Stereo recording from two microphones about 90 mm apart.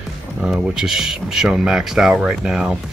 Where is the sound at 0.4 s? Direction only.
5° right (ahead or behind).